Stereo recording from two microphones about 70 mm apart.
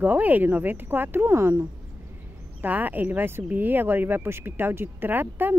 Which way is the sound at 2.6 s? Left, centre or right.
Right.